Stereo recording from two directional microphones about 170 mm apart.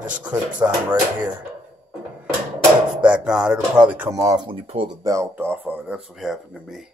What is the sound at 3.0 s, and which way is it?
Speech, 5° right (ahead or behind).